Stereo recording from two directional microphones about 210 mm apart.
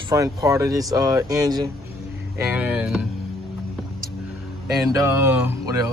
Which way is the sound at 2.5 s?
5° right (ahead or behind).